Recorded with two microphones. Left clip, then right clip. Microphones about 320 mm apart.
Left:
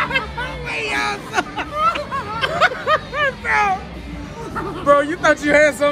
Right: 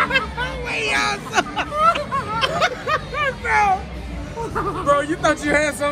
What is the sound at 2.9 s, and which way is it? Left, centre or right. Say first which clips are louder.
Bow-wow: left 3 dB; left.